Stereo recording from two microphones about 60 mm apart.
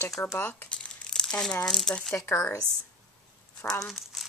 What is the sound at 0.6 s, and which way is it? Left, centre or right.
Crumpling, centre.